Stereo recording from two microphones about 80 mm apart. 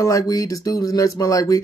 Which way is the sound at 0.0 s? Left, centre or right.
Left.